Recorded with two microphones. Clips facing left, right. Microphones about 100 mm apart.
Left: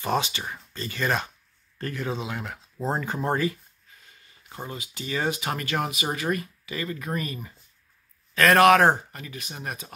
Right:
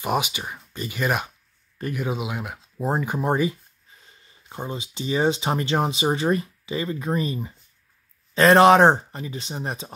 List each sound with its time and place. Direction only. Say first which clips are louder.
0.0 s speech: right 2 dB; 15° right (ahead or behind)
4.0 s speech: right 1 dB; 30° right (ahead or behind)